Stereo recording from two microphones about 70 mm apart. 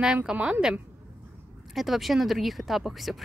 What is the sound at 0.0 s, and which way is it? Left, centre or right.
Speech, centre.